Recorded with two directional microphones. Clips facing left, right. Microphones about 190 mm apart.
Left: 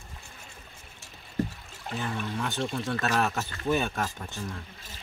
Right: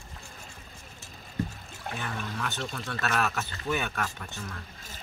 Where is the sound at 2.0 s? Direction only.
25° left (ahead or behind).